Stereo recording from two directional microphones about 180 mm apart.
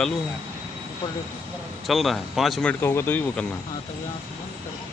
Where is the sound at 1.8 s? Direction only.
Centre (ahead or behind).